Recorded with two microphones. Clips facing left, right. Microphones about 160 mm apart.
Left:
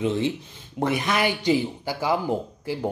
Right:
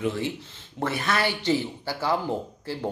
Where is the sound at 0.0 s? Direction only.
20° left (ahead or behind).